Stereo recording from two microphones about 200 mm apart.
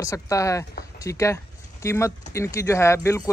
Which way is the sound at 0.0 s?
15° left (ahead or behind).